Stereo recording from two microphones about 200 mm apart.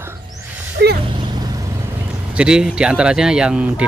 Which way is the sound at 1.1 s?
20° right (ahead or behind).